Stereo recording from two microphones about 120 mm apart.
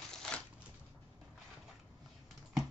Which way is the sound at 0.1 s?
5° left (ahead or behind).